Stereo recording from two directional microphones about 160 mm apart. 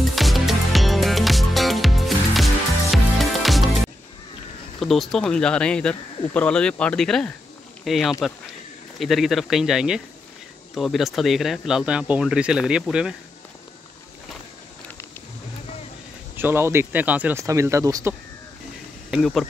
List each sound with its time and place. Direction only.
0.1 s music: centre (ahead or behind)
4.7 s speech: centre (ahead or behind)
16.3 s speech: 15° right (ahead or behind)
19.0 s speech: centre (ahead or behind)